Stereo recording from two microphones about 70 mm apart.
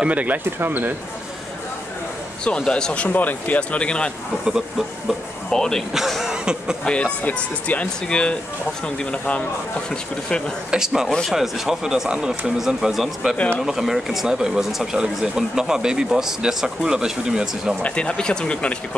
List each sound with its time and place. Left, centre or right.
0.0 s speech: right
2.4 s speech: centre
4.5 s speech: centre
5.5 s speech: centre
5.9 s speech: centre
6.8 s speech: centre
10.7 s speech: centre
11.1 s speech: centre
11.3 s speech: centre
13.4 s speech: centre
13.7 s speech: centre
17.8 s speech: centre